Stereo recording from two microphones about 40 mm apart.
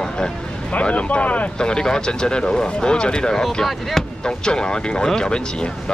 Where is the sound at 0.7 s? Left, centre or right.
Left.